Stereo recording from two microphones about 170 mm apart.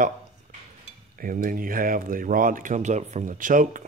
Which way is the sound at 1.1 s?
55° right (ahead or behind).